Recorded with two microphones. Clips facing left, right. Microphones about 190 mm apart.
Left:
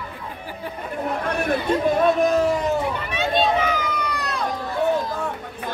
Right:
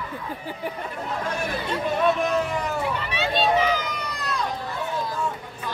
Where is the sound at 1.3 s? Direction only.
60° left (ahead or behind).